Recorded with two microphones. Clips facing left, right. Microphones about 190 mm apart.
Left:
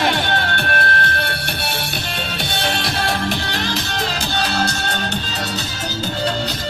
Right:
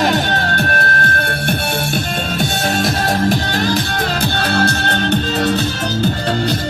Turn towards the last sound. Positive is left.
turn(degrees=-55)  # may be behind; listen again after turning